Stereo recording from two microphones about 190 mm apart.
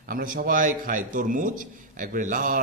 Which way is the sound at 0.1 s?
45° right (ahead or behind).